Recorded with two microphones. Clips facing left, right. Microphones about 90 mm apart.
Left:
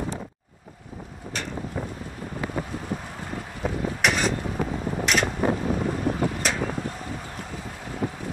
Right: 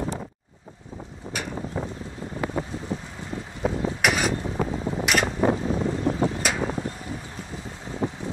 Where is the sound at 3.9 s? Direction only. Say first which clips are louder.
Left 2 dB; 5° right (ahead or behind).